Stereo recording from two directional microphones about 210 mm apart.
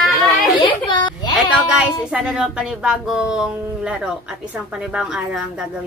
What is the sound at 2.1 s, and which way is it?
A woman's voice, 5° right (ahead or behind).